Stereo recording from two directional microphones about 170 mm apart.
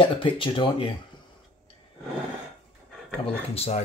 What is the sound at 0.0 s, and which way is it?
Speech, 30° left (ahead or behind).